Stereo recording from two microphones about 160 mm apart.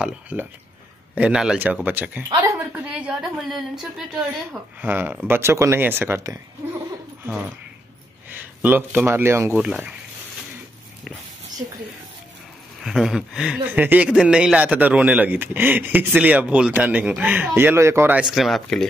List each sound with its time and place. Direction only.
0.0 s a man's voice: 10° right (ahead or behind)
2.9 s a woman's voice: 5° right (ahead or behind)
12.8 s a man's voice: 5° right (ahead or behind)
18.3 s a woman's voice: centre (ahead or behind)